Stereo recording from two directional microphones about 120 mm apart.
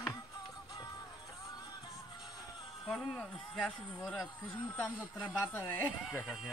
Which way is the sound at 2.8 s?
5° left (ahead or behind).